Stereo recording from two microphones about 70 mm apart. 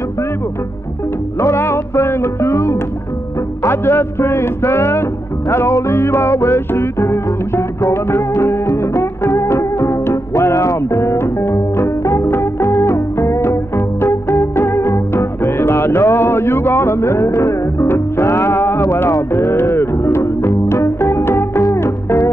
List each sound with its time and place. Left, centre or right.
1.4 s music: left